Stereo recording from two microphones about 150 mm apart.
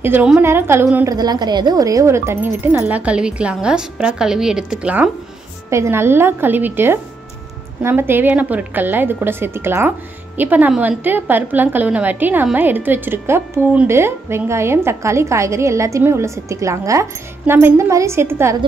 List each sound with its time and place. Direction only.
0.0 s a woman's voice: 10° right (ahead or behind)
5.7 s a woman's voice: 20° right (ahead or behind)